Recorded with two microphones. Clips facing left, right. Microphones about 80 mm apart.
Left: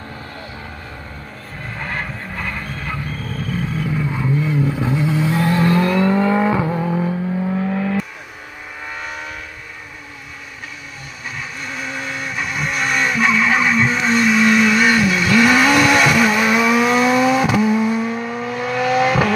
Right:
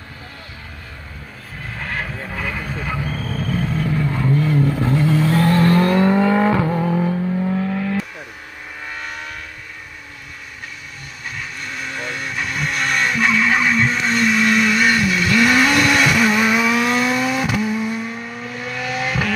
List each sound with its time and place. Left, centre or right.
1.6 s vehicle: centre
3.3 s vehicle: centre
5.7 s vehicle: right
5.9 s vehicle: right
6.4 s vehicle: centre
7.7 s vehicle: centre
11.8 s vehicle: centre
16.4 s vehicle: centre
17.0 s vehicle: left